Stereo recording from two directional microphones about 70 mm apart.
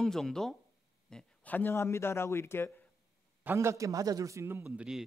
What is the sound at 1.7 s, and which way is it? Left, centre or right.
Speech, left.